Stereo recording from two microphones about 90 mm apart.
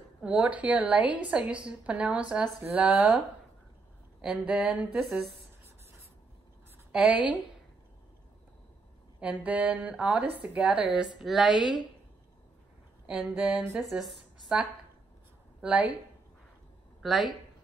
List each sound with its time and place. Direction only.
0.2 s a woman's voice: 10° right (ahead or behind)
4.2 s a woman's voice: 10° right (ahead or behind)
9.2 s a woman's voice: 15° right (ahead or behind)
13.0 s a woman's voice: 10° right (ahead or behind)
15.6 s speech: 15° right (ahead or behind)
17.0 s speech: centre (ahead or behind)